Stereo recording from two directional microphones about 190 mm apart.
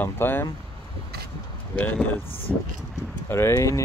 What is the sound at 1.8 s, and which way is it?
Speech, 10° left (ahead or behind).